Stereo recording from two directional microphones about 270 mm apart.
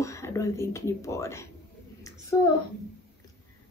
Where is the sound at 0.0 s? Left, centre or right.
Centre.